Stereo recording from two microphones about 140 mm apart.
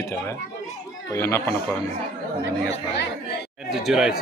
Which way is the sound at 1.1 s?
20° left (ahead or behind).